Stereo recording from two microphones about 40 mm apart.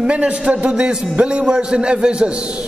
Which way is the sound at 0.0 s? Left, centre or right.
Right.